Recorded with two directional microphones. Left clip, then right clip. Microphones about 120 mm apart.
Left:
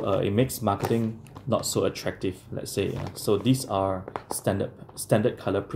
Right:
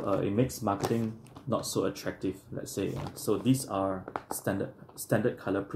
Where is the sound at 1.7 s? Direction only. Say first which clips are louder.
Left 5 dB; 20° left (ahead or behind).